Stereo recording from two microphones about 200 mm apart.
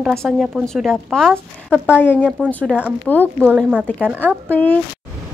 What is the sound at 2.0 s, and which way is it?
Speech, 10° left (ahead or behind).